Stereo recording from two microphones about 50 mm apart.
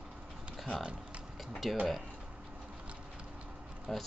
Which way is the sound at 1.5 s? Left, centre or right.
Centre.